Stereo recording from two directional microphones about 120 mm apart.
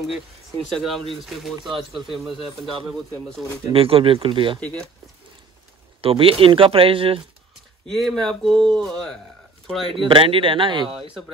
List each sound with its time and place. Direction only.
0.7 s speech: centre (ahead or behind)
3.7 s speech: 50° right (ahead or behind)
4.6 s speech: 10° left (ahead or behind)
5.9 s speech: 50° right (ahead or behind)
7.9 s speech: 5° left (ahead or behind)
10.0 s speech: 50° right (ahead or behind)